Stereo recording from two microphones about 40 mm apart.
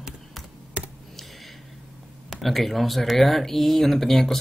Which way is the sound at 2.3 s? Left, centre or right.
Centre.